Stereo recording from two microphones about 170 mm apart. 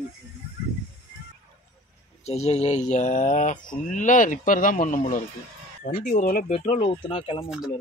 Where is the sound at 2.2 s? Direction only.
40° left (ahead or behind).